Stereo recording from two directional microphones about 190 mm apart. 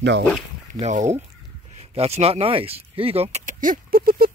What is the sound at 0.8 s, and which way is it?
Speech, 40° right (ahead or behind).